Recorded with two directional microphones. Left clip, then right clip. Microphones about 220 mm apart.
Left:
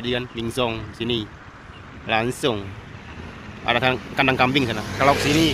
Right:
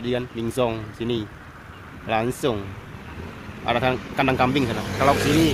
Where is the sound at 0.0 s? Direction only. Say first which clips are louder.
Even; 5° right (ahead or behind).